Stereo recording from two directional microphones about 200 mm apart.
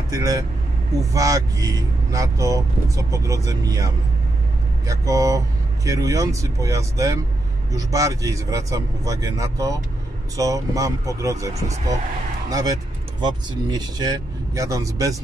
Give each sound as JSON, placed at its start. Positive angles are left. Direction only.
{"t": 0.1, "sound": "speech", "side_deg": -15}